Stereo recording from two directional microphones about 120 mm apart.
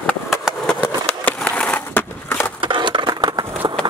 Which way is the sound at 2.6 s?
45° right (ahead or behind).